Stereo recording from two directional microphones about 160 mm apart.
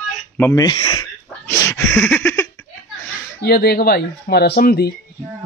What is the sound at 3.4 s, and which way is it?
Speech, 75° left (ahead or behind).